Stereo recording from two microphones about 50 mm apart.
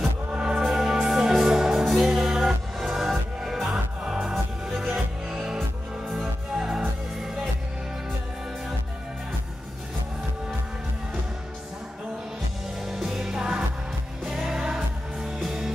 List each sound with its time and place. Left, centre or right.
0.3 s music: centre
0.6 s music: centre
12.8 s music: centre